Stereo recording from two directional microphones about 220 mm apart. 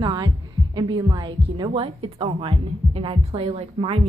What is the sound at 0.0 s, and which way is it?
A woman's voice, 20° right (ahead or behind).